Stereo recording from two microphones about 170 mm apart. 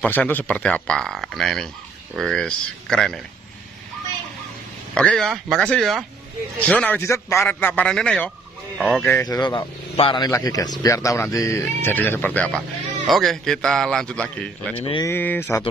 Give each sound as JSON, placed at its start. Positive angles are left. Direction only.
{"t": 0.0, "sound": "a man's voice", "side_deg": 10}
{"t": 4.9, "sound": "a man's voice", "side_deg": 5}
{"t": 9.0, "sound": "a man's voice", "side_deg": 15}
{"t": 14.8, "sound": "speech", "side_deg": 30}
{"t": 15.0, "sound": "a man's voice", "side_deg": 10}